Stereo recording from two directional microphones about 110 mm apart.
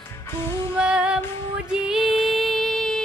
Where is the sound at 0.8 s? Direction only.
5° right (ahead or behind).